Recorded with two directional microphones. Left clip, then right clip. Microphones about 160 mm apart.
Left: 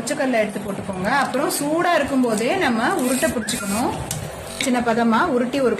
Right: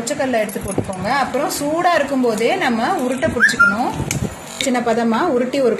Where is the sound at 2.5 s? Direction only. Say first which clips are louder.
Right 2 dB; 15° right (ahead or behind).